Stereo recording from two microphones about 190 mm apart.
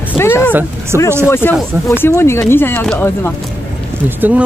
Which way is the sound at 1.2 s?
10° left (ahead or behind).